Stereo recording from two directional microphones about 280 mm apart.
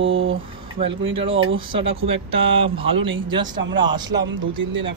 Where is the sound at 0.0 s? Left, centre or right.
Right.